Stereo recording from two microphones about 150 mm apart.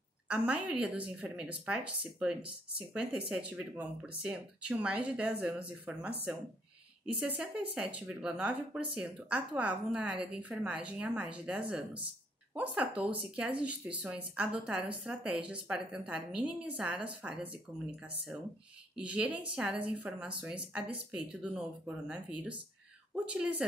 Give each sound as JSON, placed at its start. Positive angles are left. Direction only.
{"t": 0.3, "sound": "speech", "side_deg": -10}
{"t": 7.2, "sound": "speech", "side_deg": -10}
{"t": 17.7, "sound": "speech", "side_deg": -20}
{"t": 18.9, "sound": "speech", "side_deg": -10}